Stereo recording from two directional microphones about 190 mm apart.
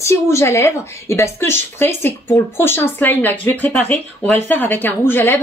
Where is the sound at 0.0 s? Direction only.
15° left (ahead or behind).